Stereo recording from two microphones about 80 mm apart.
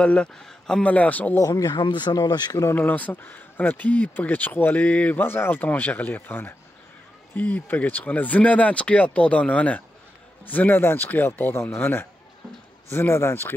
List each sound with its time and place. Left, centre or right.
0.0 s speech: centre
1.4 s speech: left
2.1 s speech: left
2.7 s speech: left